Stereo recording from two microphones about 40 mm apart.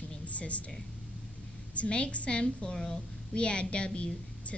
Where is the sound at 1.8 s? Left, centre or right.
Left.